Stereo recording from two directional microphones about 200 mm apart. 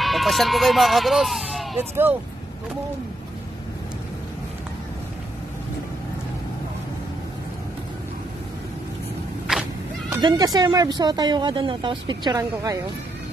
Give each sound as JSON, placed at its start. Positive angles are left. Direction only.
{"t": 0.0, "sound": "speech", "side_deg": 0}
{"t": 1.8, "sound": "speech", "side_deg": -10}
{"t": 10.2, "sound": "speech", "side_deg": -20}